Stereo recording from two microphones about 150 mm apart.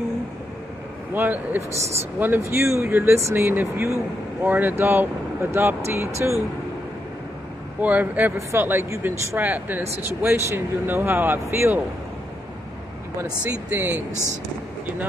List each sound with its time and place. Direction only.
1.1 s speech: 10° right (ahead or behind)
7.8 s speech: 10° right (ahead or behind)
13.2 s speech: 15° right (ahead or behind)
14.1 s speech: 50° right (ahead or behind)